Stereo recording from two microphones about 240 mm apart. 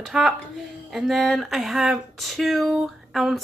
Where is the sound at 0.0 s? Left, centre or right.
Centre.